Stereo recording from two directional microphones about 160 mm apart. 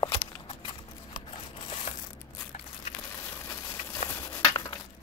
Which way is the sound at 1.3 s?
35° left (ahead or behind).